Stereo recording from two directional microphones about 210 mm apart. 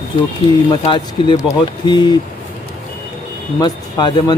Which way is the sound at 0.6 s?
25° left (ahead or behind).